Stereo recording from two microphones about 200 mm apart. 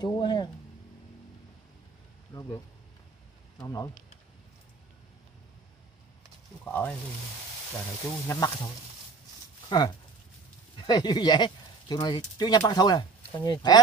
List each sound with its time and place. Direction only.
0.0 s speech: 20° left (ahead or behind)
3.5 s speech: 15° left (ahead or behind)
6.6 s speech: 10° left (ahead or behind)
8.3 s speech: 15° left (ahead or behind)
9.7 s speech: 20° left (ahead or behind)